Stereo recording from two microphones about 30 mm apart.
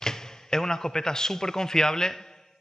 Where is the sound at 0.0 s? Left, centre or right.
Centre.